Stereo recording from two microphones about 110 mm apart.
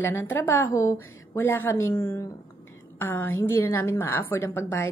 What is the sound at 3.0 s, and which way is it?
A woman's voice, 20° left (ahead or behind).